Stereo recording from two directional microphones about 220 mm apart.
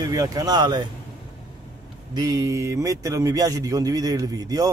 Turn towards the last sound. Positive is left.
turn(degrees=-15)  # may be behind; listen again after turning